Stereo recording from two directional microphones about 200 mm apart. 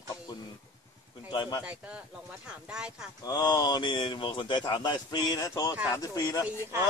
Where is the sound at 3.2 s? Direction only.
20° left (ahead or behind).